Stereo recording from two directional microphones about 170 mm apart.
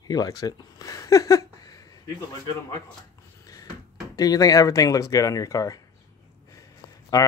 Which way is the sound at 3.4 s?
20° left (ahead or behind).